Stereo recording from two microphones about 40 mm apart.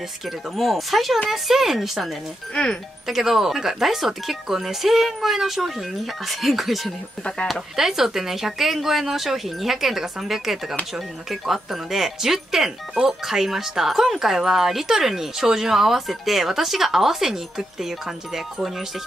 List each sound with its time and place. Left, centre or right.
0.6 s speech: centre